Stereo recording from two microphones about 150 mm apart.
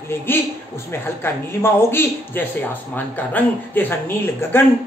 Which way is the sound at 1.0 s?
15° left (ahead or behind).